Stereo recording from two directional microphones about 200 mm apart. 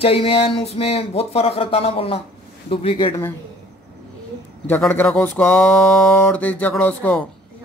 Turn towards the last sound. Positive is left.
turn(degrees=10)  # may be behind; listen again after turning